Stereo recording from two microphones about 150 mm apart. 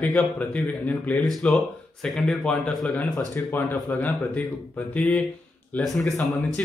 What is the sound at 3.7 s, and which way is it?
Speech, 5° left (ahead or behind).